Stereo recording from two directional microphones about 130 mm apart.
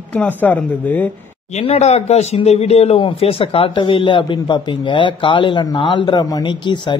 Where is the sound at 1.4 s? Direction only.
55° left (ahead or behind).